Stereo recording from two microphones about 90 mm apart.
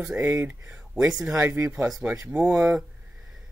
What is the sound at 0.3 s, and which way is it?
Speech, 20° right (ahead or behind).